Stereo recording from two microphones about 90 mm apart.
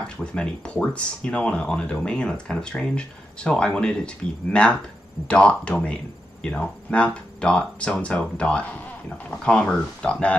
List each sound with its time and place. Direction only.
0.0 s speech: 10° left (ahead or behind)